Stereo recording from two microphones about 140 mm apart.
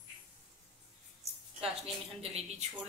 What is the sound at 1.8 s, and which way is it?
Speech, 45° right (ahead or behind).